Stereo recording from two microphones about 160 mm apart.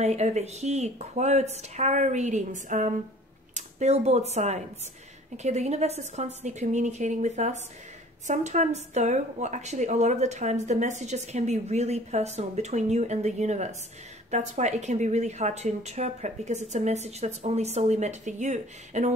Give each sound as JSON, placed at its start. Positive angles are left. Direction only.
{"t": 0.0, "sound": "a woman's voice", "side_deg": -45}